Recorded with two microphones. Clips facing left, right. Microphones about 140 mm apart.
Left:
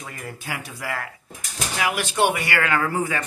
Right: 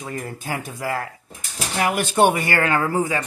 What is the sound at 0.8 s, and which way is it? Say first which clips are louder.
Speech: right 4 dB; 30° right (ahead or behind).